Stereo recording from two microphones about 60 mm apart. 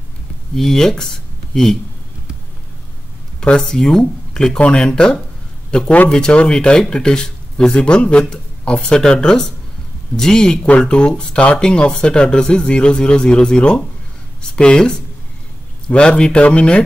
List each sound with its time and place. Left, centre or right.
0.6 s speech: centre
3.3 s a man's voice: centre